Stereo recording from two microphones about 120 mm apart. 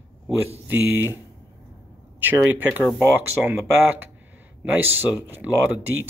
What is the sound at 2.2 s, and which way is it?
Speech, 15° right (ahead or behind).